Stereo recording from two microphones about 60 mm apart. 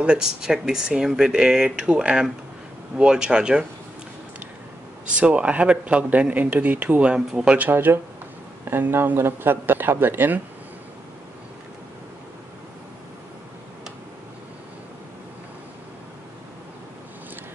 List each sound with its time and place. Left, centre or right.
0.0 s speech: centre
5.1 s speech: right
7.2 s speech: centre
7.5 s speech: right